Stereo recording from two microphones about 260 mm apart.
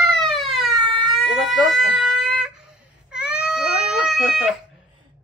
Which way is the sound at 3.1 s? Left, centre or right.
Centre.